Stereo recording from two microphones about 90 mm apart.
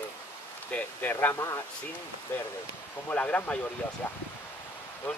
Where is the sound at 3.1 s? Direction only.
15° left (ahead or behind).